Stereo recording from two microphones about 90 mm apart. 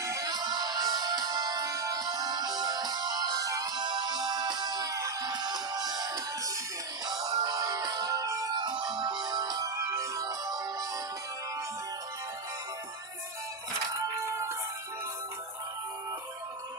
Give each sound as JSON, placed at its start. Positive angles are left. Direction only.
{"t": 0.0, "sound": "music", "side_deg": -35}
{"t": 0.3, "sound": "music", "side_deg": -50}
{"t": 8.5, "sound": "music", "side_deg": -55}